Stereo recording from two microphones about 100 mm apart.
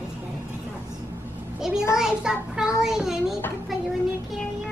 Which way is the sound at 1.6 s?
5° right (ahead or behind).